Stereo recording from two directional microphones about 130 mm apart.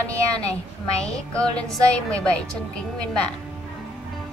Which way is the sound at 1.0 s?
5° left (ahead or behind).